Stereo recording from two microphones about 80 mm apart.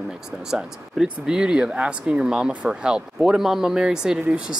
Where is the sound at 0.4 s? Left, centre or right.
Centre.